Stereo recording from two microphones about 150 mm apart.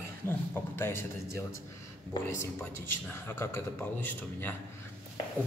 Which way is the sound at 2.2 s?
15° left (ahead or behind).